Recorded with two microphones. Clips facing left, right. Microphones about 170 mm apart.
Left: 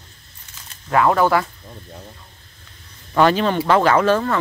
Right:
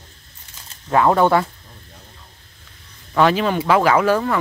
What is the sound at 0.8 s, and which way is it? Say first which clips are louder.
Speech: right 1 dB; 20° right (ahead or behind).